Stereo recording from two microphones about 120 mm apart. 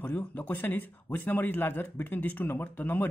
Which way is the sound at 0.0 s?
15° left (ahead or behind).